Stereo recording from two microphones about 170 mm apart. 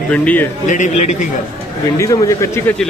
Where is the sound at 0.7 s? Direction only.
45° left (ahead or behind).